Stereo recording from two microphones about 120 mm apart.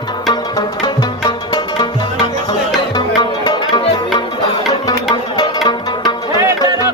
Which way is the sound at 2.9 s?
35° left (ahead or behind).